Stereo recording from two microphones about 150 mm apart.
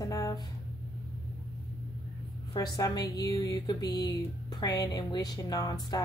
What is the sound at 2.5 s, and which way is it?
A woman's voice, 25° left (ahead or behind).